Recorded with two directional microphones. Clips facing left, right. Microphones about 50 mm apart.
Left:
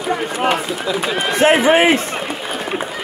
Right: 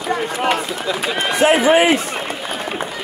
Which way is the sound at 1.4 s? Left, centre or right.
Left.